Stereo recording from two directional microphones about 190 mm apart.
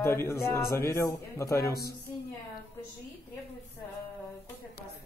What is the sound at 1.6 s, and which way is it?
Music, 55° left (ahead or behind).